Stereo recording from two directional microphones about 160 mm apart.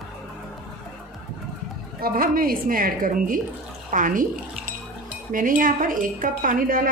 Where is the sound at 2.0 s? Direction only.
65° right (ahead or behind).